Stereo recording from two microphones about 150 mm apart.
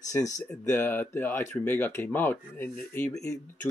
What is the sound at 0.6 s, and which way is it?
Speech, 15° left (ahead or behind).